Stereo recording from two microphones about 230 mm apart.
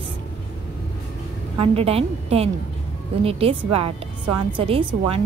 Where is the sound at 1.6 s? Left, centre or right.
Right.